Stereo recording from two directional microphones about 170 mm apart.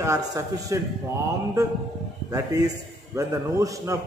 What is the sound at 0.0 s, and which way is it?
Speech, 20° right (ahead or behind).